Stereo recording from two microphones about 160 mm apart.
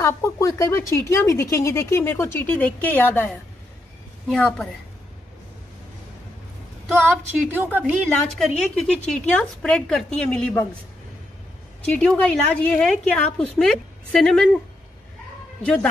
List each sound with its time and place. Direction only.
0.0 s a woman's voice: 20° left (ahead or behind)
7.5 s a woman's voice: 10° right (ahead or behind)
8.4 s a woman's voice: 5° left (ahead or behind)
11.8 s a woman's voice: 5° left (ahead or behind)
15.6 s speech: 5° left (ahead or behind)